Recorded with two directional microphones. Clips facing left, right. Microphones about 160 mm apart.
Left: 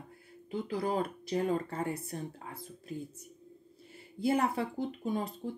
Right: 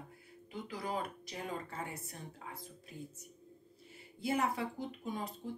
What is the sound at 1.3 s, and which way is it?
Speech, 45° left (ahead or behind).